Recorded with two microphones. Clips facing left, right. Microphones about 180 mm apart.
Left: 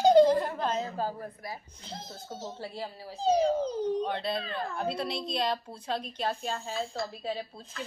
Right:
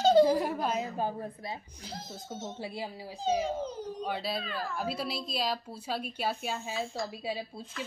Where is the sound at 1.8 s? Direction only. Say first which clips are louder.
Even; 25° left (ahead or behind).